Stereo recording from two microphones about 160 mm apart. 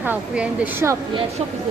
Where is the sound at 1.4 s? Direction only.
35° right (ahead or behind).